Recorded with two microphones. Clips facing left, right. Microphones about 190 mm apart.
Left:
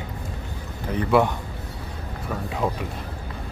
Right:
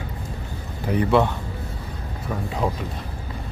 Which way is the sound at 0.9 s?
10° right (ahead or behind).